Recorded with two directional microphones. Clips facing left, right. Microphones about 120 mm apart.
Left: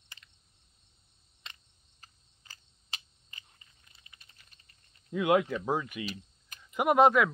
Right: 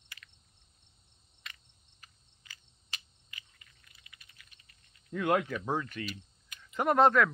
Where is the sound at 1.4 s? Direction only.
30° left (ahead or behind).